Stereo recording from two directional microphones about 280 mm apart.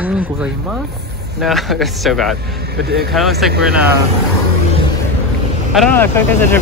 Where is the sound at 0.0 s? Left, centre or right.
Centre.